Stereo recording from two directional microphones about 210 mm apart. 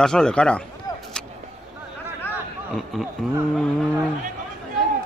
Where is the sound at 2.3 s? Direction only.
Centre (ahead or behind).